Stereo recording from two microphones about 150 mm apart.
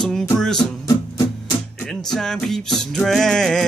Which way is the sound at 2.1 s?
5° left (ahead or behind).